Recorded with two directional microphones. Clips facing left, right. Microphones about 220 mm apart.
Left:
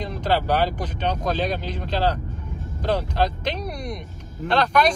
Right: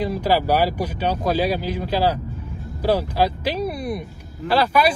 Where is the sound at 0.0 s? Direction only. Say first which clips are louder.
Right 4 dB; 5° right (ahead or behind).